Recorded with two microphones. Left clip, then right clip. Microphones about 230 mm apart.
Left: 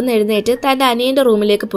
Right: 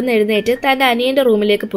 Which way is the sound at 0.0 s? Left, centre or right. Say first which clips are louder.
Even; left.